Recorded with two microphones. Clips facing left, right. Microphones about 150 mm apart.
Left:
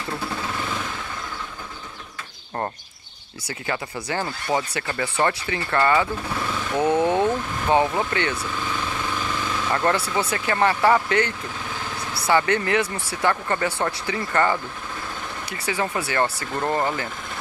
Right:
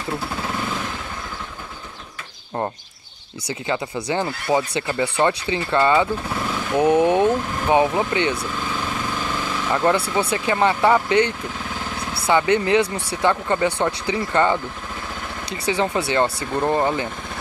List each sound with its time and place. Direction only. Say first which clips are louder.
3.6 s speech: right 4 dB; 20° right (ahead or behind)
9.7 s speech: right 3 dB; 15° right (ahead or behind)
15.6 s speech: right 4 dB; 20° right (ahead or behind)